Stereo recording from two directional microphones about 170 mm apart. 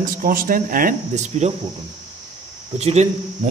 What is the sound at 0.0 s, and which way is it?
Speech, 55° right (ahead or behind).